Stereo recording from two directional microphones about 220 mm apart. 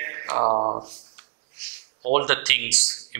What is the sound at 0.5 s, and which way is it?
Speech, 30° right (ahead or behind).